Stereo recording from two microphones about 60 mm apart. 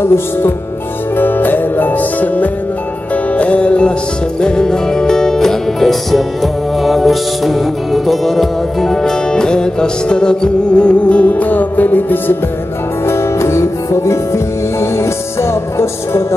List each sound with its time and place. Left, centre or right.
0.0 s music: left
1.1 s music: left
13.0 s music: left